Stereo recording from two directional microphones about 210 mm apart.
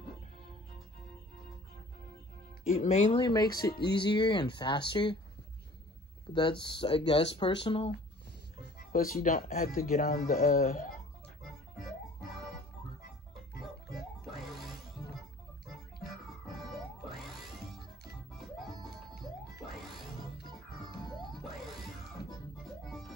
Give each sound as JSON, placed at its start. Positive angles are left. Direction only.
{"t": 2.7, "sound": "speech", "side_deg": 35}
{"t": 6.3, "sound": "speech", "side_deg": 20}
{"t": 8.9, "sound": "speech", "side_deg": 40}
{"t": 11.4, "sound": "music", "side_deg": 0}
{"t": 13.9, "sound": "music", "side_deg": 0}
{"t": 16.3, "sound": "music", "side_deg": 0}
{"t": 19.7, "sound": "music", "side_deg": 0}
{"t": 21.0, "sound": "music", "side_deg": 20}
{"t": 21.4, "sound": "music", "side_deg": 0}